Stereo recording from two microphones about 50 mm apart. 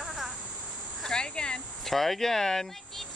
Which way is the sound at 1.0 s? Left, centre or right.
Centre.